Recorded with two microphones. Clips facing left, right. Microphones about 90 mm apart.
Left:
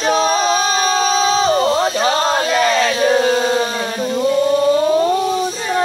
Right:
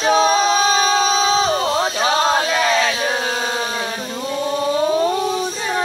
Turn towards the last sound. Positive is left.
turn(degrees=-5)  # may be behind; listen again after turning